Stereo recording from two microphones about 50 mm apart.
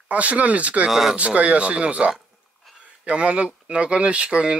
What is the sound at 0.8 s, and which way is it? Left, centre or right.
Speech, centre.